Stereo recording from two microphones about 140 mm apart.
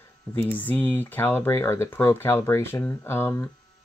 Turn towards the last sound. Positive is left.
turn(degrees=15)  # may be behind; listen again after turning